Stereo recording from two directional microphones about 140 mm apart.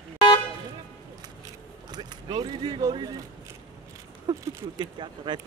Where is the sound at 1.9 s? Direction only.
30° right (ahead or behind).